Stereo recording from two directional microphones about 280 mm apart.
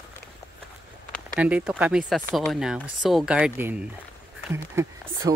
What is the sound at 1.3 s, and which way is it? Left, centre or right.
Speech, centre.